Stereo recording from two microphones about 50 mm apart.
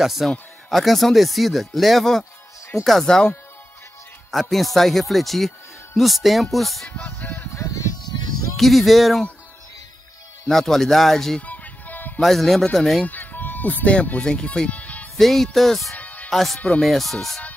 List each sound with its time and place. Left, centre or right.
0.0 s speech: centre
6.9 s music: left
7.5 s music: left
8.5 s speech: centre
10.4 s speech: centre
11.4 s music: left
12.2 s speech: centre
13.0 s speech: left
14.2 s speech: centre
14.7 s music: left
15.1 s speech: centre
16.0 s music: left
16.3 s speech: centre